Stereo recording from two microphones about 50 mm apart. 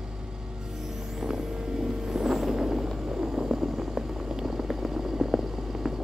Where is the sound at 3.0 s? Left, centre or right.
Centre.